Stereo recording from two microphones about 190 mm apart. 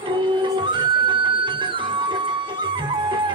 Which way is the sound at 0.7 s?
25° right (ahead or behind).